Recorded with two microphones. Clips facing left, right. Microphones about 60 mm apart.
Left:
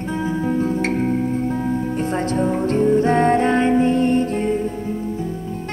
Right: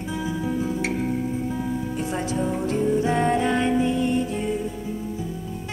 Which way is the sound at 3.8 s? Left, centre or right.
Left.